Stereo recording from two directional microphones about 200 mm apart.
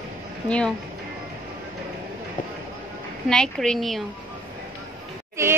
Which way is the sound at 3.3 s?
5° left (ahead or behind).